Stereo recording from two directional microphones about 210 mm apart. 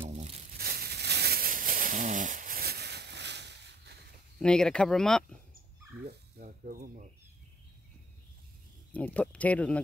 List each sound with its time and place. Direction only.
0.0 s crumpling: 30° right (ahead or behind)
0.6 s a sound: 45° right (ahead or behind)
4.4 s speech: 5° left (ahead or behind)
6.0 s speech: 45° right (ahead or behind)
8.9 s speech: 5° left (ahead or behind)